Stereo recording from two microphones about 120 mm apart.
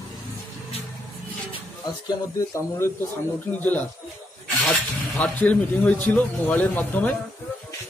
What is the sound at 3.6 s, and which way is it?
Speech, 15° left (ahead or behind).